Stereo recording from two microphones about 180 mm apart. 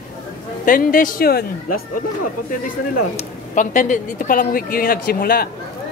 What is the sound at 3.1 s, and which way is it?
A woman's voice, 45° left (ahead or behind).